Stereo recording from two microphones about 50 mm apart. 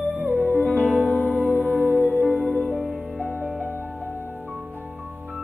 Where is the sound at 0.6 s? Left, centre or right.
Left.